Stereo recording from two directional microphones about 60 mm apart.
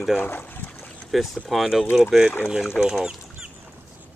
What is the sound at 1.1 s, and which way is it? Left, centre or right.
Speech, centre.